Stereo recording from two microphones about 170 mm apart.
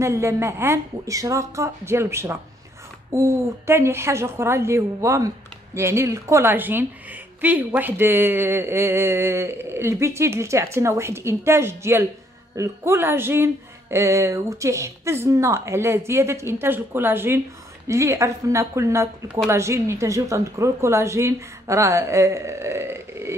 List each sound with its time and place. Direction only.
0.0 s speech: 15° right (ahead or behind)